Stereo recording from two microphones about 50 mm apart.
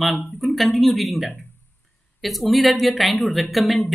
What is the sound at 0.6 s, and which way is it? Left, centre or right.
Speech, centre.